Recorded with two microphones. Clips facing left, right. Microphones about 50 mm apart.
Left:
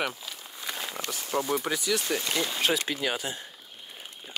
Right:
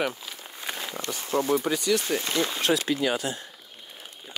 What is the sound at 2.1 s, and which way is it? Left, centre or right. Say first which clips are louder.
Speech: right 3 dB; right.